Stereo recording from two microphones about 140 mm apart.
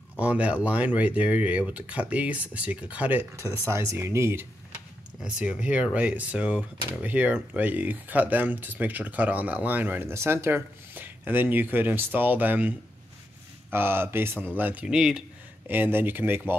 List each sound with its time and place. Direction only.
0.2 s speech: 10° right (ahead or behind)
5.2 s speech: 10° right (ahead or behind)